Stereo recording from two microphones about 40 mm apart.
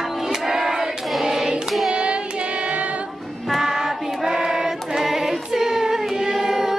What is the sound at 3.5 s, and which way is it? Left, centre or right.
Child singing, centre.